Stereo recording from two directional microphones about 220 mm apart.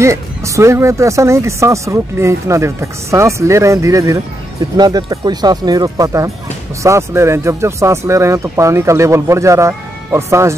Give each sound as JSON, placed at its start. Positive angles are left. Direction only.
{"t": 0.0, "sound": "speech", "side_deg": -15}